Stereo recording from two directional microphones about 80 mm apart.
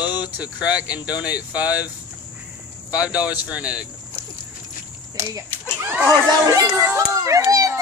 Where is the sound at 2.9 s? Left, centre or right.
Centre.